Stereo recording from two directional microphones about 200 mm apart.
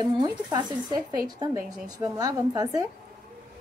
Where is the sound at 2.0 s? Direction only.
20° right (ahead or behind).